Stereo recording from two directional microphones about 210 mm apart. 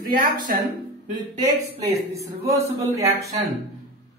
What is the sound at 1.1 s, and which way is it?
A man's voice, 20° right (ahead or behind).